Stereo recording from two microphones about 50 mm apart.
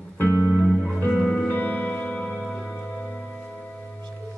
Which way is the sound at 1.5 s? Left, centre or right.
Left.